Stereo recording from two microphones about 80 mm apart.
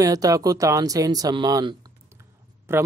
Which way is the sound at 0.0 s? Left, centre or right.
Right.